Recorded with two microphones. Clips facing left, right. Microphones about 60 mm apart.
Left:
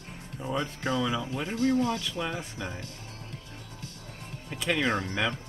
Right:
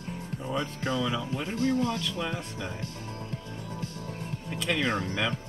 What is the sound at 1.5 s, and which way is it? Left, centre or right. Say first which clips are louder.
Speech: left 2 dB; left.